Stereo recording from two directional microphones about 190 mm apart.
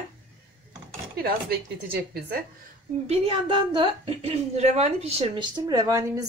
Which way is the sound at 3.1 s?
25° right (ahead or behind).